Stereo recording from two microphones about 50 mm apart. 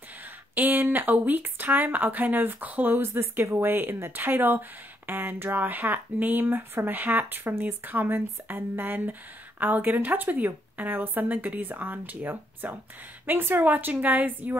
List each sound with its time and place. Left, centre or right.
0.6 s a woman's voice: right
3.0 s a woman's voice: right